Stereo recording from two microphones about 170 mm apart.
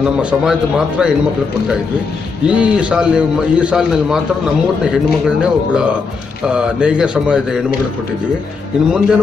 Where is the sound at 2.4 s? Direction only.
5° right (ahead or behind).